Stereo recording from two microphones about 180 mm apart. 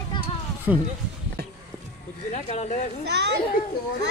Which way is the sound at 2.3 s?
40° left (ahead or behind).